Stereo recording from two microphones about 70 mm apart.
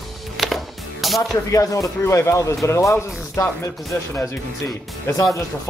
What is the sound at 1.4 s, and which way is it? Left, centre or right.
Speech, left.